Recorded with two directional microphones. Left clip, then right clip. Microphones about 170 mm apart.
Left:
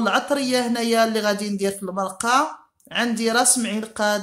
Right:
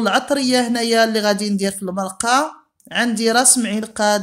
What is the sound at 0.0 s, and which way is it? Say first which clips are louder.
Speech: right 3 dB; 35° right (ahead or behind).